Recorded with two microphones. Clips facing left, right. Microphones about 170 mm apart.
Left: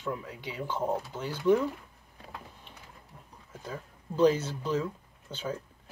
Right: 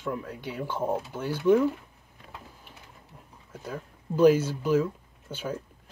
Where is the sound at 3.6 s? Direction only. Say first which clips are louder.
Right 3 dB; 5° right (ahead or behind).